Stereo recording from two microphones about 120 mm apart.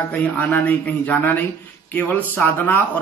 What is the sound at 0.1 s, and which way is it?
A man's voice, 15° left (ahead or behind).